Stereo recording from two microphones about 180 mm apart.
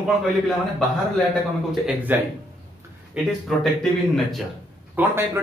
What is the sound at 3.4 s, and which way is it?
Speech, centre (ahead or behind).